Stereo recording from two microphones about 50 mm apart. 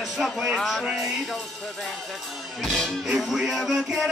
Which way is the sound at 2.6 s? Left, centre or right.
Centre.